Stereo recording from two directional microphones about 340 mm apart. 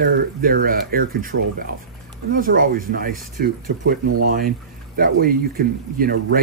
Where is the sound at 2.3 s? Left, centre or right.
Right.